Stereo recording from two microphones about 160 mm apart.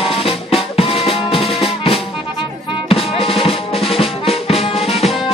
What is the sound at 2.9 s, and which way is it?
Music, 35° left (ahead or behind).